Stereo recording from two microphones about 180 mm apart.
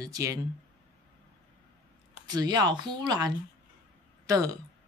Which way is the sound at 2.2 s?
20° right (ahead or behind).